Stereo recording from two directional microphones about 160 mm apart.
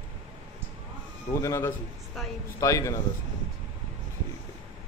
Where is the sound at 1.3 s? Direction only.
20° left (ahead or behind).